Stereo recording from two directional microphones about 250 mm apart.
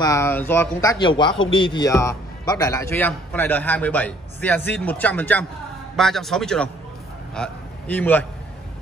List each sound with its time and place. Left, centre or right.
0.0 s a man's voice: centre